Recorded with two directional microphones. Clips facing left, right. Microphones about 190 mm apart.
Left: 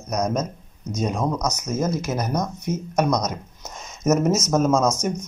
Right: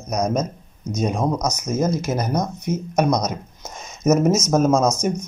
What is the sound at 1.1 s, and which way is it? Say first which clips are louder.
Speech: right 2 dB; 20° right (ahead or behind).